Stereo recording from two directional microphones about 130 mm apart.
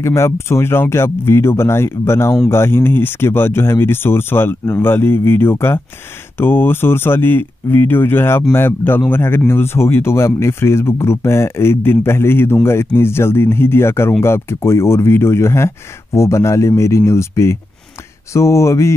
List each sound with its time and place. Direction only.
0.0 s speech: 20° left (ahead or behind)